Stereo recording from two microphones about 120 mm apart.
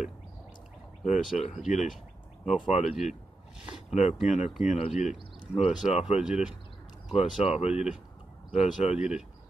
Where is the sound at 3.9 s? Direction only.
70° left (ahead or behind).